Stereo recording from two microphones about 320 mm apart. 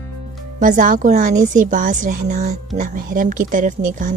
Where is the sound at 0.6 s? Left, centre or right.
Right.